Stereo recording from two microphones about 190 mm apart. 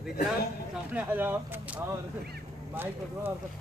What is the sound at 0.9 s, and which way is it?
Speech, 10° right (ahead or behind).